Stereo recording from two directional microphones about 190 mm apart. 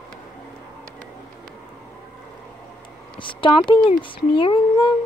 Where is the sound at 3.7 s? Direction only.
25° left (ahead or behind).